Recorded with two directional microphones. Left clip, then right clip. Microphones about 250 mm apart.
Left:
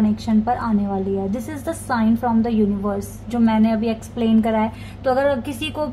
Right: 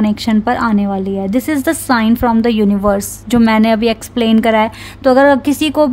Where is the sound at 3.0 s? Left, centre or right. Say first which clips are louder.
Right 9 dB; right.